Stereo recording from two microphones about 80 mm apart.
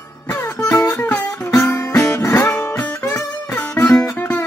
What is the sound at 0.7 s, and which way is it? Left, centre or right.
Music, left.